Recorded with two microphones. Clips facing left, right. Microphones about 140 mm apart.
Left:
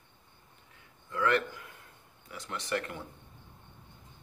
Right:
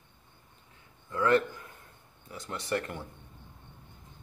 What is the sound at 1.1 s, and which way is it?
A man's voice, 30° right (ahead or behind).